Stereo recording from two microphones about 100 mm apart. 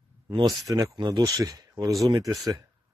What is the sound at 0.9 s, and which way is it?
Speech, 45° right (ahead or behind).